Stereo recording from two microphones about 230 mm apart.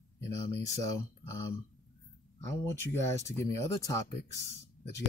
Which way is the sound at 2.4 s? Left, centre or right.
Centre.